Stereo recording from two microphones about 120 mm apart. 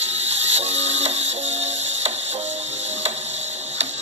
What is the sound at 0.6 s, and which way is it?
Ratchet, 60° right (ahead or behind).